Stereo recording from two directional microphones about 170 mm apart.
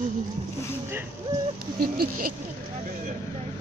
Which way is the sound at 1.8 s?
60° right (ahead or behind).